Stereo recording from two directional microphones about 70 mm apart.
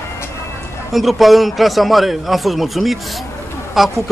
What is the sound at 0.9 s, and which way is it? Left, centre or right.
A man's voice, centre.